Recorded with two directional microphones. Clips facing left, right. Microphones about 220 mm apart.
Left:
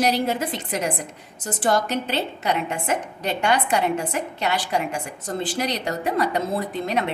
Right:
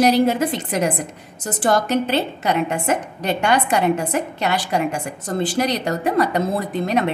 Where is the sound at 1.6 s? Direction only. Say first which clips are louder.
Right 4 dB; 45° right (ahead or behind).